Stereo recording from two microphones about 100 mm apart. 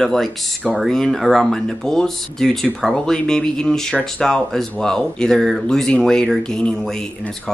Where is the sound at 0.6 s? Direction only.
10° right (ahead or behind).